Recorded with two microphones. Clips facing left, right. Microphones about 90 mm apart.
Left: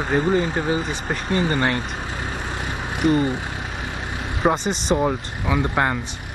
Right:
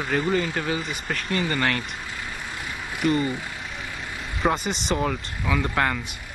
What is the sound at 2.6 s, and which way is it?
Vehicle, 30° left (ahead or behind).